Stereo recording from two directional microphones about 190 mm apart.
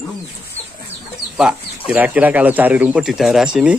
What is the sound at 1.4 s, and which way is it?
Speech, 5° right (ahead or behind).